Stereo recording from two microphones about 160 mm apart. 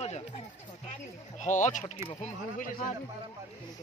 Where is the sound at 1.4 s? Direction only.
50° left (ahead or behind).